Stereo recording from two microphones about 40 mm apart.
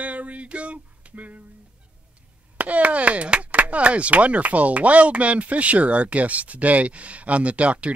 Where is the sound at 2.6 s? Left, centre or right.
Right.